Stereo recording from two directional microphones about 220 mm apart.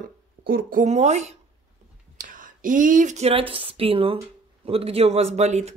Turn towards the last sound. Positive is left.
turn(degrees=-30)  # may be behind; listen again after turning